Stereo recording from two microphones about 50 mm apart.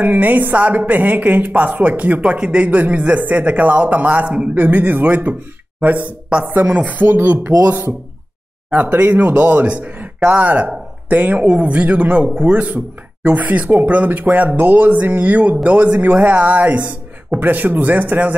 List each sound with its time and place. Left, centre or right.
0.0 s a woman's voice: right
6.7 s speech: right
7.0 s a woman's voice: right
8.6 s a woman's voice: right
12.3 s speech: centre
12.5 s a woman's voice: right